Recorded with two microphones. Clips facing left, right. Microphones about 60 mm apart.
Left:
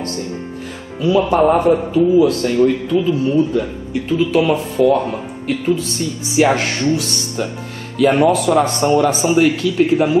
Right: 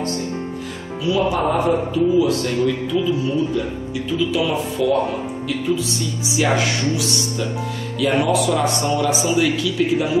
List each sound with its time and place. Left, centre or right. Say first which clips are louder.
1.0 s a man's voice: left 6 dB; left